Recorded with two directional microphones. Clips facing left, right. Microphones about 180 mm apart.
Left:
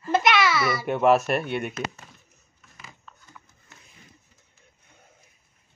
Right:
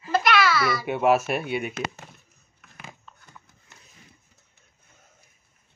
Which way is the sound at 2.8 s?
60° right (ahead or behind).